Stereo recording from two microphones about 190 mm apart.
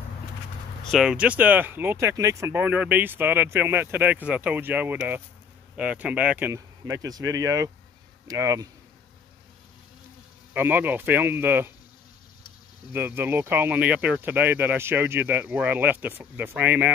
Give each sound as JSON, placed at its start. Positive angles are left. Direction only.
{"t": 0.9, "sound": "speech", "side_deg": -5}
{"t": 10.5, "sound": "speech", "side_deg": -10}
{"t": 12.9, "sound": "speech", "side_deg": -10}